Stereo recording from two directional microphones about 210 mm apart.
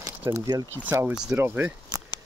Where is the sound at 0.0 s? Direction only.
15° right (ahead or behind).